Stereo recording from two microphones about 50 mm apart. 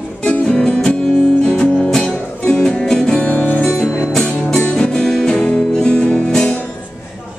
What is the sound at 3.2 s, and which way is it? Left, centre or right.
Music, left.